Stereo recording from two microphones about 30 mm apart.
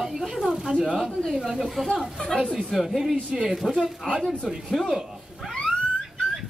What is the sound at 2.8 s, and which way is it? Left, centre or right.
Speech, centre.